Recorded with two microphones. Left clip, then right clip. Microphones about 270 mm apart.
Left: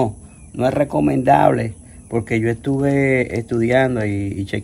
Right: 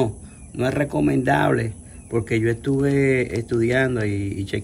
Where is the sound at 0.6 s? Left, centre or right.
Centre.